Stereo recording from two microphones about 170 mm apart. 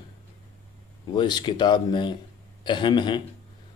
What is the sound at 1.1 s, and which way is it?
Speech, 25° left (ahead or behind).